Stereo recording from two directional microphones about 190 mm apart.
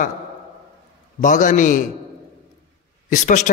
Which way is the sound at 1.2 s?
40° left (ahead or behind).